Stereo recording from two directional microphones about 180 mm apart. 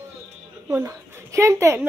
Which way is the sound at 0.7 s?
15° right (ahead or behind).